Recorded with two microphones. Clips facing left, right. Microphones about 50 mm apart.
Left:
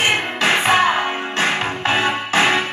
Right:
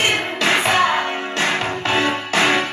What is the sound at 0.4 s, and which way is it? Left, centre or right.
Music, left.